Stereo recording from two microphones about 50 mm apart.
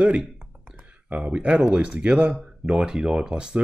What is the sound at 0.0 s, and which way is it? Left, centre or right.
Speech, right.